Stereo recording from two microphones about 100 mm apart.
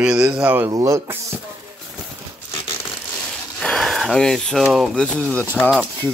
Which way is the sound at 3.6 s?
5° left (ahead or behind).